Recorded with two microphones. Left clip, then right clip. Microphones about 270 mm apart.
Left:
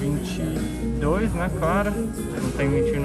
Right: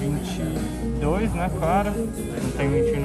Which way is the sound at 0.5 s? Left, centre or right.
Centre.